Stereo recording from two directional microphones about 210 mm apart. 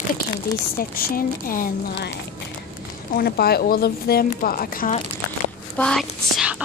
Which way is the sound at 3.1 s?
45° left (ahead or behind).